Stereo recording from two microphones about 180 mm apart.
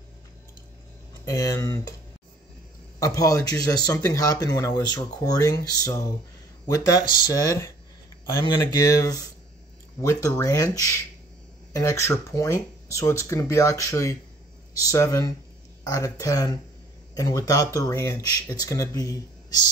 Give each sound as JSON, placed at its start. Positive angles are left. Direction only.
{"t": 1.2, "sound": "speech", "side_deg": 20}
{"t": 3.0, "sound": "speech", "side_deg": 20}
{"t": 11.7, "sound": "speech", "side_deg": 15}